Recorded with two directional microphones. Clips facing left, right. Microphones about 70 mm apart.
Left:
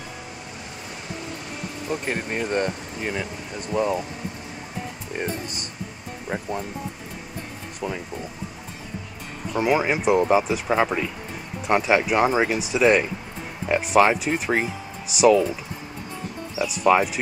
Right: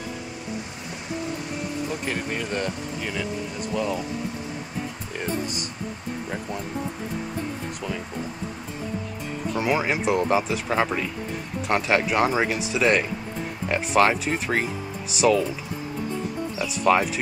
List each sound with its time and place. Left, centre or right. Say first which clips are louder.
1.9 s speech: left 1 dB; left
9.7 s speech: left 3 dB; centre
16.5 s speech: left 2 dB; centre